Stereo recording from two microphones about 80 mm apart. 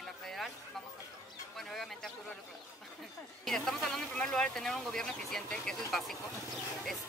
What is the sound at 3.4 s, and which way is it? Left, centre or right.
Speech, centre.